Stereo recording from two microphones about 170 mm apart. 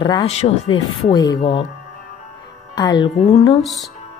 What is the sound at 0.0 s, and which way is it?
Speech, 30° left (ahead or behind).